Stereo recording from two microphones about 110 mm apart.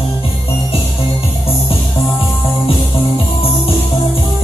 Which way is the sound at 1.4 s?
60° left (ahead or behind).